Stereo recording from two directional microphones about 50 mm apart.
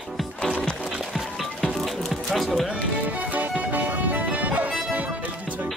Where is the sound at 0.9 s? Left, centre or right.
Centre.